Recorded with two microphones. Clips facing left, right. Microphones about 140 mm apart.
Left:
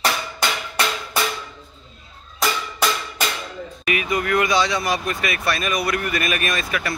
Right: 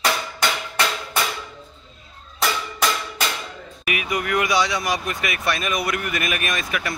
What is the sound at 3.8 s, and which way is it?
Speech, 10° right (ahead or behind).